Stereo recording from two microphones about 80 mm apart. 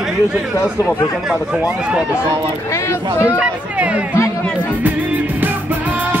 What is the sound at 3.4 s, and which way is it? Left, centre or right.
Speech, centre.